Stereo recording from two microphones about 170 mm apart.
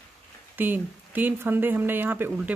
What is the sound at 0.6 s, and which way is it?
A woman's voice, 10° right (ahead or behind).